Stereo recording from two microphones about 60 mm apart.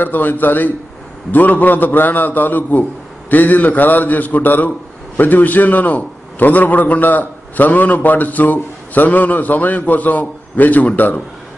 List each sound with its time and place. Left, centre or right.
0.0 s a man's voice: left